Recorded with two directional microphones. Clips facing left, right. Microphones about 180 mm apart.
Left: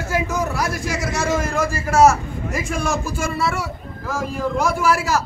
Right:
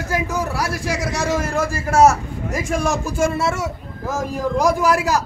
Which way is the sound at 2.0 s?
40° right (ahead or behind).